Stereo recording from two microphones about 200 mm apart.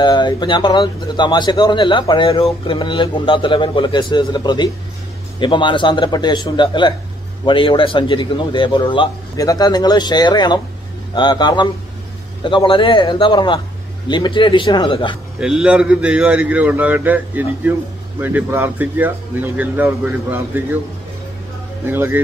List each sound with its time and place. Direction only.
0.0 s speech: 20° left (ahead or behind)
15.4 s speech: 5° right (ahead or behind)
21.8 s speech: 10° right (ahead or behind)